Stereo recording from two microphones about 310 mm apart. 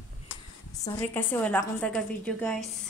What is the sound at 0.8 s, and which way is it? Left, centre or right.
A woman's voice, centre.